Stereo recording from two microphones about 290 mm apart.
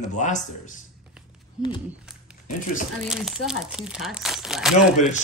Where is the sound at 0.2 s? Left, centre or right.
Left.